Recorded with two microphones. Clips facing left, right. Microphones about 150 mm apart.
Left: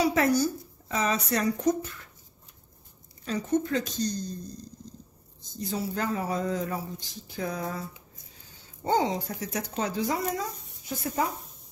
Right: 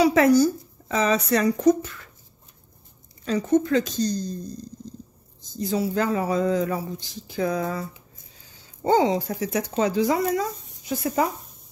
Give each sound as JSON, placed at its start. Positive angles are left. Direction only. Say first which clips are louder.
{"t": 0.0, "sound": "speech", "louder": "right 7 dB", "side_deg": -90}
{"t": 3.3, "sound": "speech", "louder": "right 6 dB", "side_deg": -90}
{"t": 5.6, "sound": "speech", "louder": "right 7 dB", "side_deg": -90}
{"t": 8.8, "sound": "speech", "louder": "right 6 dB", "side_deg": -90}